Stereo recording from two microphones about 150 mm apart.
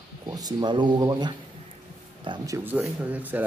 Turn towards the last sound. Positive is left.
turn(degrees=-10)  # may be behind; listen again after turning